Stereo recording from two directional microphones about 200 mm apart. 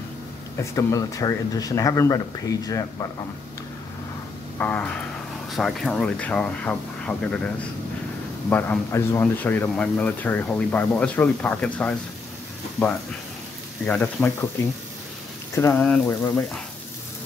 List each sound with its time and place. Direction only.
0.6 s speech: 15° left (ahead or behind)
4.6 s speech: 10° left (ahead or behind)
13.8 s speech: 10° left (ahead or behind)
15.5 s speech: 10° left (ahead or behind)